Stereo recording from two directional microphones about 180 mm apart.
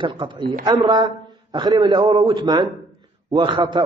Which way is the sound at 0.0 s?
25° right (ahead or behind).